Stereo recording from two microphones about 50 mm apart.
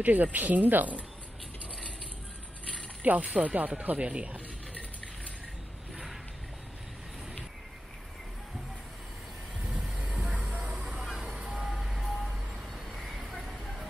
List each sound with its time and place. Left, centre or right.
0.0 s speech: right
3.0 s speech: right
9.6 s vehicle: centre
9.9 s music: right
10.9 s vehicle: centre
11.3 s vehicle: right
11.6 s music: centre
12.7 s vehicle: centre